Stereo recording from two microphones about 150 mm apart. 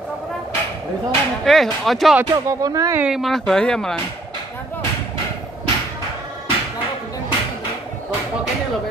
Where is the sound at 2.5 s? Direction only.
25° right (ahead or behind).